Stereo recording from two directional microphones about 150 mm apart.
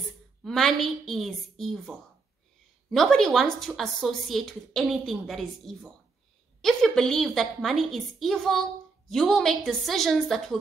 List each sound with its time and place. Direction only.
0.4 s a woman's voice: centre (ahead or behind)